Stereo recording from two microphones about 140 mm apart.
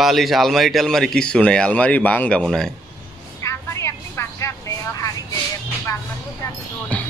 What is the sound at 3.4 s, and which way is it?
Vehicle, 20° left (ahead or behind).